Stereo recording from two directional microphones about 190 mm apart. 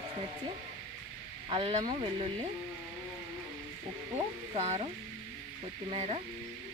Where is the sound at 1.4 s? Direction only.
25° right (ahead or behind).